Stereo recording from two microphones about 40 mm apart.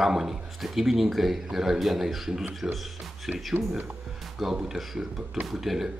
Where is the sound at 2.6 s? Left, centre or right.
Right.